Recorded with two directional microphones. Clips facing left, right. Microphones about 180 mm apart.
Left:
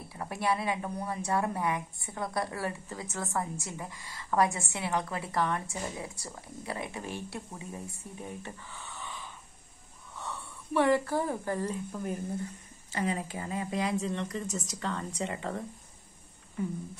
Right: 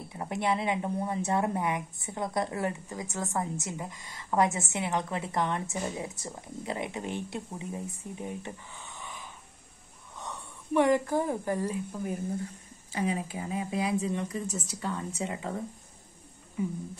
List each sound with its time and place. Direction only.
0.1 s a woman's voice: 20° right (ahead or behind); by 15.6 s 5° right (ahead or behind)